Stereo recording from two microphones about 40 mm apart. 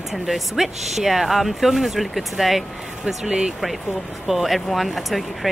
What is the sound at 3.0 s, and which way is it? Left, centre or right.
Speech, right.